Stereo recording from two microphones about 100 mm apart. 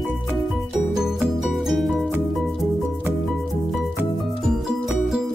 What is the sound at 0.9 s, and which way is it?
Music, 5° right (ahead or behind).